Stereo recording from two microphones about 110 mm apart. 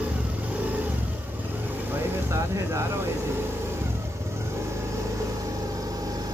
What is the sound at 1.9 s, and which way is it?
Vehicle, 25° right (ahead or behind).